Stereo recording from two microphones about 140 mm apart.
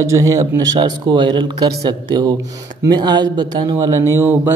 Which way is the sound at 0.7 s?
35° right (ahead or behind).